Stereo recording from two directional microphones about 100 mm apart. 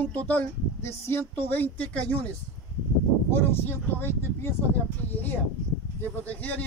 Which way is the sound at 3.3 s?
20° left (ahead or behind).